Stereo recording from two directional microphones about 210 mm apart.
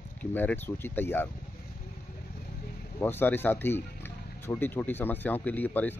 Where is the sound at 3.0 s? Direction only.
10° left (ahead or behind).